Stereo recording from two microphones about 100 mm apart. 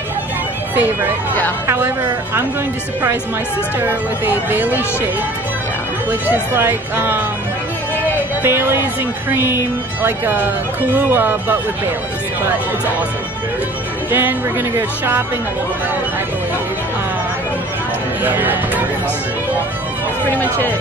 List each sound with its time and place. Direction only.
0.7 s speech: 20° right (ahead or behind)
3.8 s speech: 20° right (ahead or behind)
6.0 s speech: 20° right (ahead or behind)
8.4 s speech: 25° right (ahead or behind)
14.1 s speech: 20° right (ahead or behind)
18.2 s speech: 20° right (ahead or behind)
20.2 s speech: 15° left (ahead or behind)